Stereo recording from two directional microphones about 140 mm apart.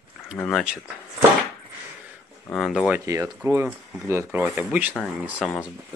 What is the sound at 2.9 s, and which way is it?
Speech, 20° right (ahead or behind).